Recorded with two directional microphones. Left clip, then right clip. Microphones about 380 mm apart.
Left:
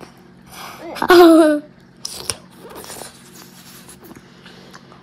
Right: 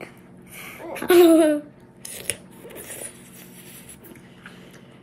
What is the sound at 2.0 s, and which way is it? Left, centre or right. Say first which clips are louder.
Scissors: left 6 dB; centre.